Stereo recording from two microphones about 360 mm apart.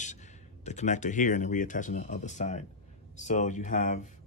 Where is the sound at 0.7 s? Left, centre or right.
Centre.